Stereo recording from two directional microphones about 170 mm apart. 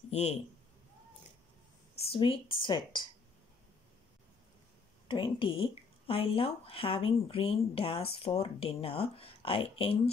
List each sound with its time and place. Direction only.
0.1 s a man's voice: 40° left (ahead or behind)
2.0 s speech: 35° left (ahead or behind)
5.0 s speech: 30° left (ahead or behind)